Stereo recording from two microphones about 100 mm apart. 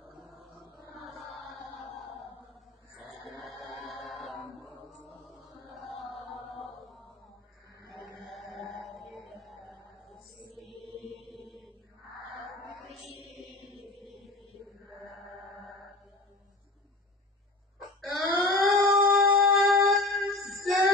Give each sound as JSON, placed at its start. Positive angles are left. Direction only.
{"t": 0.9, "sound": "music", "side_deg": 0}
{"t": 3.3, "sound": "music", "side_deg": 0}
{"t": 5.8, "sound": "chant", "side_deg": 0}
{"t": 8.0, "sound": "chant", "side_deg": 0}
{"t": 8.8, "sound": "a sound", "side_deg": 0}
{"t": 10.0, "sound": "mantra", "side_deg": 0}
{"t": 12.6, "sound": "mantra", "side_deg": 0}
{"t": 18.1, "sound": "a sound", "side_deg": 0}
{"t": 18.9, "sound": "music", "side_deg": 0}